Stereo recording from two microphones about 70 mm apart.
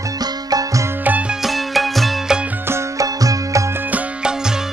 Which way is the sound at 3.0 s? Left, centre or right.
Right.